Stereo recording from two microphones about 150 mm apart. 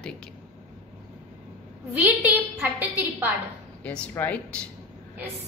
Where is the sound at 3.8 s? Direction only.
10° left (ahead or behind).